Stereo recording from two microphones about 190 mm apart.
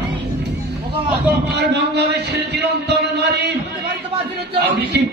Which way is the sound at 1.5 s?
60° right (ahead or behind).